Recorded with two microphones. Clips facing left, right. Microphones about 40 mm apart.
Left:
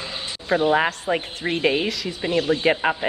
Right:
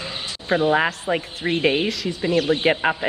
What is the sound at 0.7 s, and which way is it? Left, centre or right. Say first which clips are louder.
Speech: even; centre.